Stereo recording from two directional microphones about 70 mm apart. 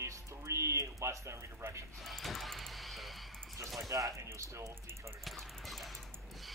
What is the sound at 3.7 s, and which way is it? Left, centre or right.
Speech, right.